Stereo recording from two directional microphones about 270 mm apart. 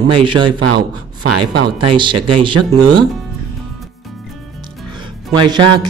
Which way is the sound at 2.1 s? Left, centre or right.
Right.